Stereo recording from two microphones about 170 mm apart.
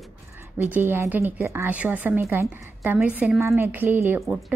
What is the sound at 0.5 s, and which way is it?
A woman's voice, 10° right (ahead or behind).